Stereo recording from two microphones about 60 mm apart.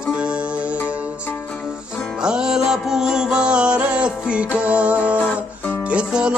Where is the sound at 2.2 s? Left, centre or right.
Centre.